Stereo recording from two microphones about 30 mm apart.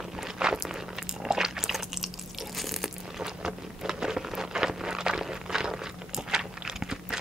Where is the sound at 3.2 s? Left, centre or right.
Centre.